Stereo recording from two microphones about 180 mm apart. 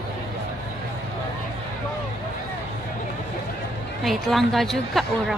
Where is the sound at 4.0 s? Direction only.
Centre (ahead or behind).